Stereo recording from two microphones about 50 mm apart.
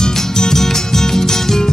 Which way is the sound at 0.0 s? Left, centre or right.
Centre.